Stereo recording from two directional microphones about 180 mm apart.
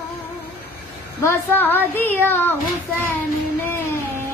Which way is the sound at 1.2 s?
10° left (ahead or behind).